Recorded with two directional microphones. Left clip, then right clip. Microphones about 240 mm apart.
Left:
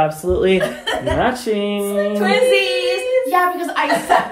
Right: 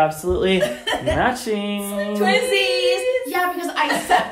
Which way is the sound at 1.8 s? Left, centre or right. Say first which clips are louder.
Left 7 dB; centre.